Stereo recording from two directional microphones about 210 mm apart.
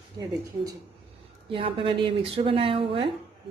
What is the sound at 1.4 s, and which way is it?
Speech, 25° right (ahead or behind).